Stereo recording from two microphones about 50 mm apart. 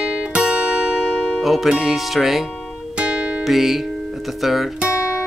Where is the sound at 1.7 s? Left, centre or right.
Centre.